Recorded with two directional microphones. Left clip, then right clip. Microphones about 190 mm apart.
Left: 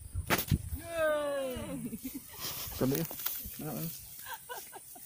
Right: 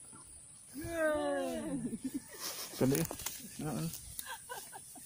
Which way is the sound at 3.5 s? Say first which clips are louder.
Right 2 dB; 25° right (ahead or behind).